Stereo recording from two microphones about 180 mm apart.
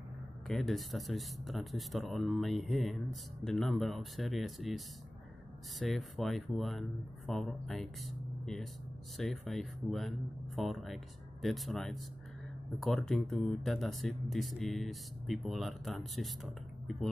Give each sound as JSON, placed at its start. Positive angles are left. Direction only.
{"t": 0.5, "sound": "speech", "side_deg": 0}